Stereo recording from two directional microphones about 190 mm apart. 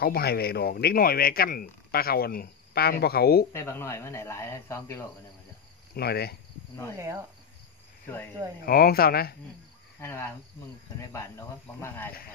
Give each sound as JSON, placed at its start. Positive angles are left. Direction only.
{"t": 0.0, "sound": "speech", "side_deg": 55}
{"t": 3.5, "sound": "speech", "side_deg": 15}
{"t": 5.9, "sound": "speech", "side_deg": 55}
{"t": 7.0, "sound": "cricket", "side_deg": -15}
{"t": 8.6, "sound": "speech", "side_deg": 50}
{"t": 9.9, "sound": "cricket", "side_deg": 10}
{"t": 11.0, "sound": "speech", "side_deg": 15}